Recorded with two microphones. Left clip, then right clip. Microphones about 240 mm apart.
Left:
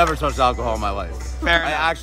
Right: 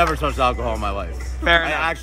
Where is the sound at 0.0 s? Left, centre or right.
Centre.